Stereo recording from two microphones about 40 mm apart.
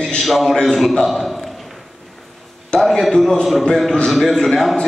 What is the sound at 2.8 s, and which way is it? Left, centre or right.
A man's voice, centre.